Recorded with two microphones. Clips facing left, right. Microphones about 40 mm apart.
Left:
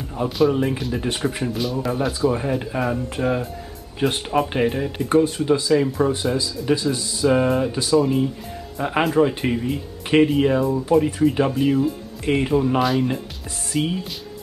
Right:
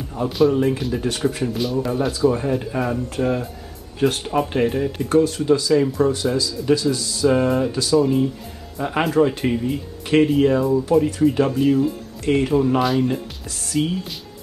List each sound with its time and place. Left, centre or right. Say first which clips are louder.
0.1 s speech: right 1 dB; centre
7.2 s speech: right 1 dB; centre
13.7 s speech: right 1 dB; centre